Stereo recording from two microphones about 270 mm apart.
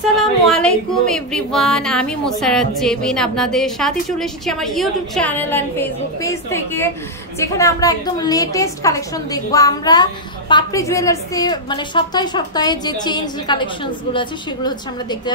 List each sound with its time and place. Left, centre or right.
0.2 s a woman's voice: centre